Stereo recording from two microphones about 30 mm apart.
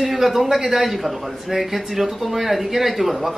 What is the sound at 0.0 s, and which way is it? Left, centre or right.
Speech, centre.